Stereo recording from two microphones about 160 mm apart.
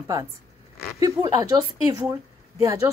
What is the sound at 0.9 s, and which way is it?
A woman's voice, 20° right (ahead or behind).